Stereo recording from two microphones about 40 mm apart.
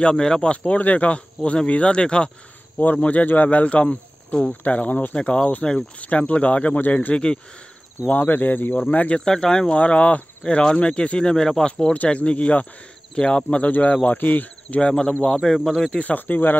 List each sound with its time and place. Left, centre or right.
0.0 s speech: centre
0.5 s speech: left
2.8 s speech: left
5.1 s speech: left
8.7 s speech: left
9.2 s speech: centre
9.8 s speech: left
10.4 s speech: left
11.9 s speech: left
13.7 s speech: left
14.8 s speech: left
15.5 s speech: centre
16.0 s speech: left